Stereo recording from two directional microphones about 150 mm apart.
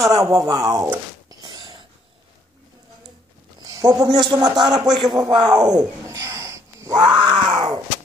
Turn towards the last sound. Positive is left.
turn(degrees=-30)  # may be behind; listen again after turning